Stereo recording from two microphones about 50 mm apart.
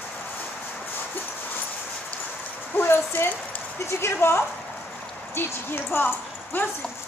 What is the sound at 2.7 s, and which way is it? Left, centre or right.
Dog, left.